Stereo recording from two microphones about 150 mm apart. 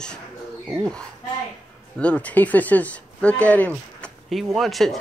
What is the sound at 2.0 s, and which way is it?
Speech, 10° left (ahead or behind).